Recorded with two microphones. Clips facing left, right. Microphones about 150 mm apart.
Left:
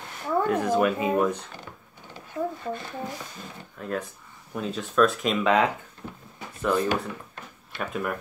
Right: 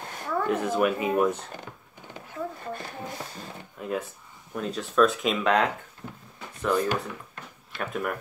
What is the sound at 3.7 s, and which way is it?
Speech, 10° right (ahead or behind).